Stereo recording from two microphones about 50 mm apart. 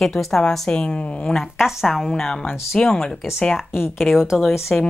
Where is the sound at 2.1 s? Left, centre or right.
Centre.